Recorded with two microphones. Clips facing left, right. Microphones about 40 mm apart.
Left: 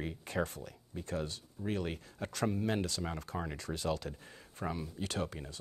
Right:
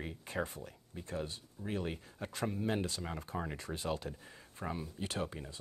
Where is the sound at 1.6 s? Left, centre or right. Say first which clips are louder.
Left 4 dB; centre.